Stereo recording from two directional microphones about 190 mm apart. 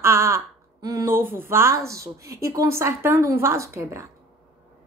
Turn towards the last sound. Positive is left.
turn(degrees=-15)  # may be behind; listen again after turning